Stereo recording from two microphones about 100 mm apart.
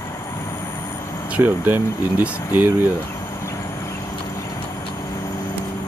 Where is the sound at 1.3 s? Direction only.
20° right (ahead or behind).